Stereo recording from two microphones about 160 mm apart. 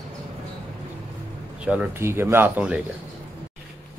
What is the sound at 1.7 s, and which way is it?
Speech, 10° right (ahead or behind).